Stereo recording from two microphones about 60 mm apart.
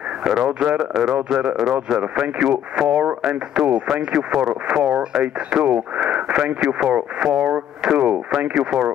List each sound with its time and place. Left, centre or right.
0.2 s speech: centre